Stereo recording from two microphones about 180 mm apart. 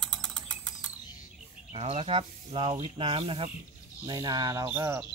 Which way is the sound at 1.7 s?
35° right (ahead or behind).